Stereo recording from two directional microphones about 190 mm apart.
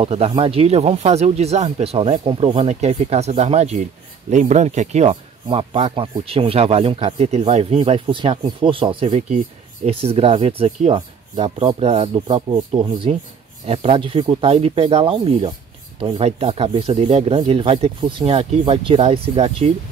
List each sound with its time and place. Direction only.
0.0 s speech: 30° right (ahead or behind)